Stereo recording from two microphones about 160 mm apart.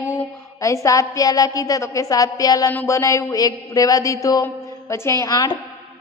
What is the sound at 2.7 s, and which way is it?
A woman's voice, 15° left (ahead or behind).